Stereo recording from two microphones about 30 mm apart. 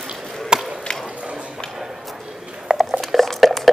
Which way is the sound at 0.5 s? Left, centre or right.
Right.